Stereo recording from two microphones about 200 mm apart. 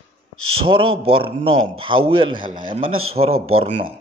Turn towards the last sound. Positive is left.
turn(degrees=-35)  # may be behind; listen again after turning